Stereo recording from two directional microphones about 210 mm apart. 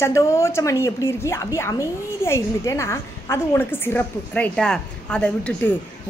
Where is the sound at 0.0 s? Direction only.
15° left (ahead or behind).